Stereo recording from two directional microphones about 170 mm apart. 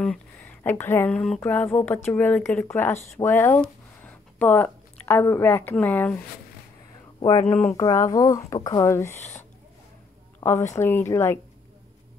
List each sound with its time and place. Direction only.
0.0 s speech: 5° left (ahead or behind)
7.2 s speech: 25° left (ahead or behind)
10.7 s speech: 15° left (ahead or behind)